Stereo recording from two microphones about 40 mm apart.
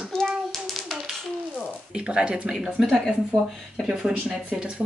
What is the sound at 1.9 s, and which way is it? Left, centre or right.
Speech, right.